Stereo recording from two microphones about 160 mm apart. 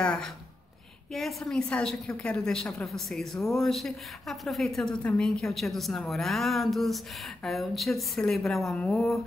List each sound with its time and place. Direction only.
0.0 s a woman's voice: 5° left (ahead or behind)